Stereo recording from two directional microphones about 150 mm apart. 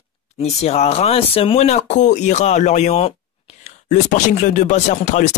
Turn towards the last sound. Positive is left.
turn(degrees=50)  # may be behind; listen again after turning